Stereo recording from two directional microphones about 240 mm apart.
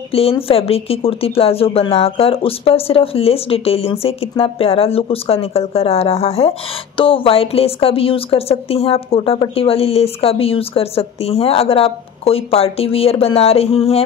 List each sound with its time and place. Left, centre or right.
0.1 s a woman's voice: left